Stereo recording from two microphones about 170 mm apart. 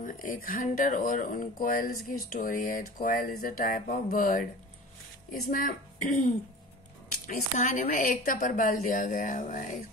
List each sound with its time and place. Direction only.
0.0 s speech: 50° left (ahead or behind)
5.5 s speech: 50° left (ahead or behind)